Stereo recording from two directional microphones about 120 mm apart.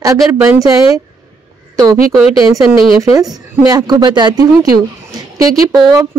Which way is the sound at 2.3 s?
30° right (ahead or behind).